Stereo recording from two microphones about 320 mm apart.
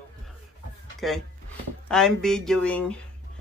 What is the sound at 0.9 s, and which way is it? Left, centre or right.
Speech, centre.